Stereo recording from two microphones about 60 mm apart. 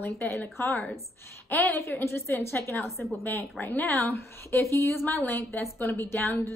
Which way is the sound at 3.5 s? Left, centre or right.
Left.